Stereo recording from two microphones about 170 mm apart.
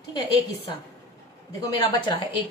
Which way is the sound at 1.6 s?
20° left (ahead or behind).